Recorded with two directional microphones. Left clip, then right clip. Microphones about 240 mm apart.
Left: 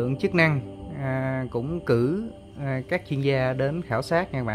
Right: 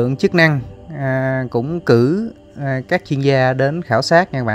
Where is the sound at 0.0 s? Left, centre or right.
Right.